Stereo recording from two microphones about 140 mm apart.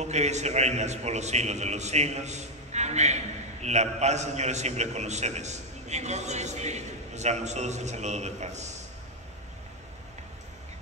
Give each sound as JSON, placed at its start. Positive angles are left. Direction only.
{"t": 0.0, "sound": "a man's voice", "side_deg": -55}